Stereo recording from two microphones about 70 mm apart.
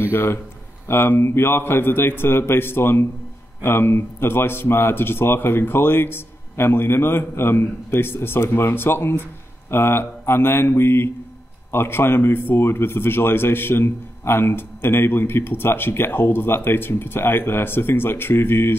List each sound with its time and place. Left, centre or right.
0.0 s speech: left